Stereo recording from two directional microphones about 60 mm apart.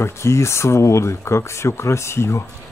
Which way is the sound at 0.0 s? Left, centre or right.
Left.